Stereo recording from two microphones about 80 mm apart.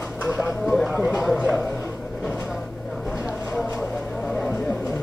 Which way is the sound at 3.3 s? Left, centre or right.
Centre.